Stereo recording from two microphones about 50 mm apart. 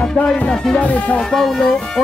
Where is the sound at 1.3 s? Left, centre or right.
Centre.